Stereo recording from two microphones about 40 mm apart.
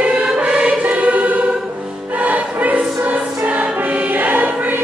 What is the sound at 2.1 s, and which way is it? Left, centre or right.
Music, right.